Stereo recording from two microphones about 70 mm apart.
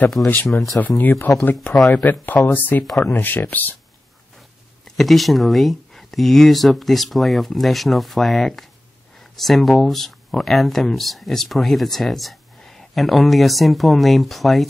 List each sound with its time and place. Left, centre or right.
0.2 s speech: left
0.7 s speech: left
4.8 s speech: centre